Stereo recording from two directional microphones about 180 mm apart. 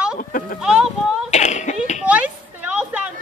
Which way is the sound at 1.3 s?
40° left (ahead or behind).